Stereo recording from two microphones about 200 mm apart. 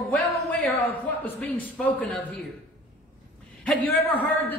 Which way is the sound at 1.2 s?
10° left (ahead or behind).